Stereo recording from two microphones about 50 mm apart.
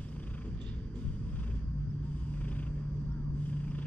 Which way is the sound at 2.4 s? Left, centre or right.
Left.